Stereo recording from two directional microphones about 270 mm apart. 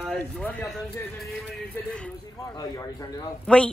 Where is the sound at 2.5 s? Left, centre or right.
Centre.